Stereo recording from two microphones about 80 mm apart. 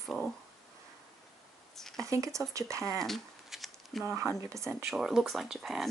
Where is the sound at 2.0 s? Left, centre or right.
Right.